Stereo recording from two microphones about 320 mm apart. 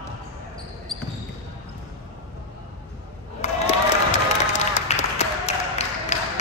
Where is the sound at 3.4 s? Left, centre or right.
Left.